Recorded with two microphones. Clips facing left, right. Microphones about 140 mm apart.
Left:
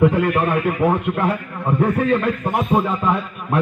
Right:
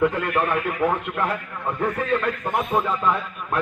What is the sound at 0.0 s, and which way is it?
A man's voice, 15° left (ahead or behind).